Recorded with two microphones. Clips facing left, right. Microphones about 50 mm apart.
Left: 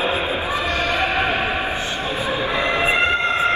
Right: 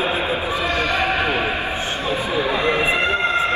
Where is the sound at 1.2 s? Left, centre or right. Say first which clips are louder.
Even; left.